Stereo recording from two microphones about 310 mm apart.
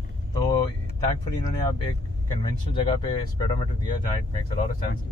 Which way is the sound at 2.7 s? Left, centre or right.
Centre.